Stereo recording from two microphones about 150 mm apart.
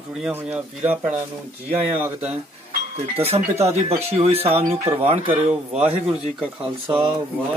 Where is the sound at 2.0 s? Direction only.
15° right (ahead or behind).